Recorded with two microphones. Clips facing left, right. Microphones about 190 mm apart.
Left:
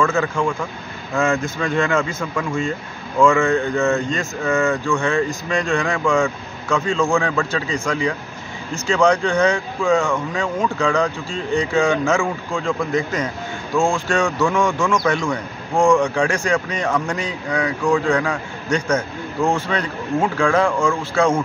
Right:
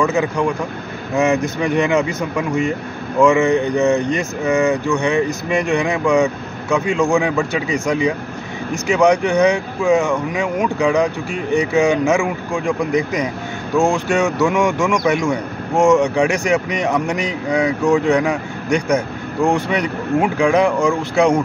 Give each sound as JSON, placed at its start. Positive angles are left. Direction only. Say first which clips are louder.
{"t": 0.0, "sound": "speech", "louder": "right 2 dB", "side_deg": -15}